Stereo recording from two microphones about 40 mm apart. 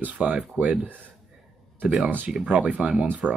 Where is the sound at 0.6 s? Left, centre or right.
Right.